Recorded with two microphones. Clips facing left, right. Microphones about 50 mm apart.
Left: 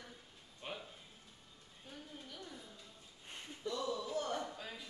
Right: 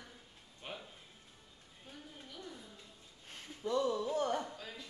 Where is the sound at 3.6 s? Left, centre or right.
Right.